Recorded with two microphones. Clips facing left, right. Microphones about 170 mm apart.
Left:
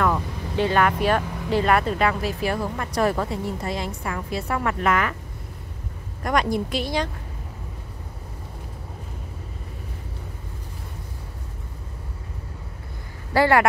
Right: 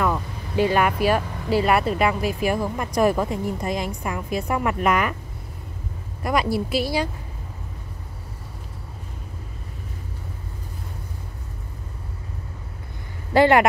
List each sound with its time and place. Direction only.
0.0 s speech: 5° right (ahead or behind)
6.2 s speech: 5° right (ahead or behind)
13.3 s speech: 20° right (ahead or behind)